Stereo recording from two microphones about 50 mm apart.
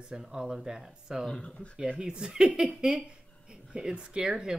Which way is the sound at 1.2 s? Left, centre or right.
Centre.